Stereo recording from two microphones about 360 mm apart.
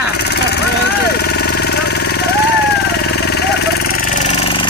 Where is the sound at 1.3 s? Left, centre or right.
Left.